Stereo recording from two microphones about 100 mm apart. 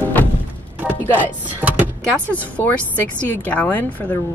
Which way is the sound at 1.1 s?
20° right (ahead or behind).